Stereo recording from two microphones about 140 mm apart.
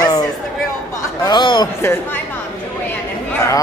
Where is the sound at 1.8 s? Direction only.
15° left (ahead or behind).